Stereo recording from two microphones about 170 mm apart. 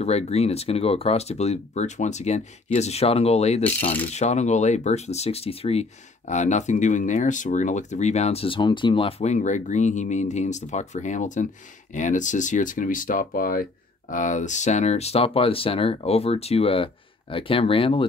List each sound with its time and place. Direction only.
0.0 s speech: 40° left (ahead or behind)